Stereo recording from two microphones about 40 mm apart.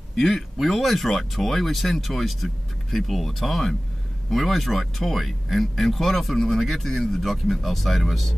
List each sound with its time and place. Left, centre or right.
0.1 s speech: centre